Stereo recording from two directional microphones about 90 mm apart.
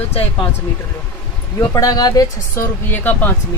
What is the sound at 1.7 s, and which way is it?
Speech, 45° left (ahead or behind).